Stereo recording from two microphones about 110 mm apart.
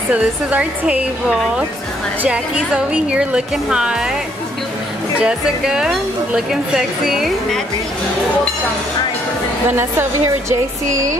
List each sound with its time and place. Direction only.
0.1 s a woman's voice: 10° right (ahead or behind)
5.2 s a woman's voice: 5° right (ahead or behind)
9.7 s a woman's voice: 20° right (ahead or behind)